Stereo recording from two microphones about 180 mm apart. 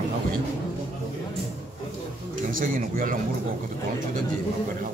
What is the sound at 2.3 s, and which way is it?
Speech, 50° right (ahead or behind).